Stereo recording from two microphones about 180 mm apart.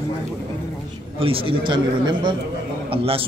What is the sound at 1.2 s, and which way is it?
A man's voice, 30° right (ahead or behind).